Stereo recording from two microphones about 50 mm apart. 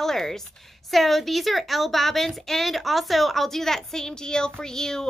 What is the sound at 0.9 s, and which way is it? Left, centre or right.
A woman's voice, centre.